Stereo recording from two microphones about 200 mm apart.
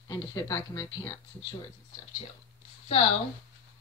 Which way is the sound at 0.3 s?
15° left (ahead or behind).